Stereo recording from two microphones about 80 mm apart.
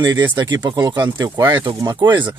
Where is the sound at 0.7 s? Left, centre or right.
Right.